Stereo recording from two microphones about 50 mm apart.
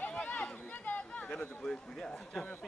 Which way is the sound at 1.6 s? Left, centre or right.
Centre.